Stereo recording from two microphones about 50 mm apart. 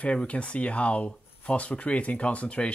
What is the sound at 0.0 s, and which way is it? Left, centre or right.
Speech, left.